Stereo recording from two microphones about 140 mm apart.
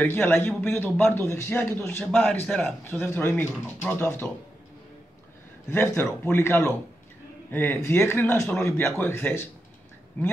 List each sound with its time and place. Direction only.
0.0 s speech: 15° left (ahead or behind)
2.4 s a man's voice: 5° left (ahead or behind)
2.8 s speech: 15° left (ahead or behind)
5.7 s speech: 20° left (ahead or behind)
5.9 s speech: 5° left (ahead or behind)
6.3 s speech: 20° left (ahead or behind)